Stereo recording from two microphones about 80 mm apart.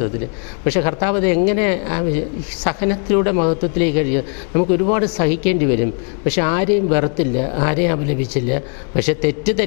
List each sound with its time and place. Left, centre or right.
0.7 s speech: centre